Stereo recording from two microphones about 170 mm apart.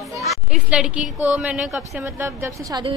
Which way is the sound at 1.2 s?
5° right (ahead or behind).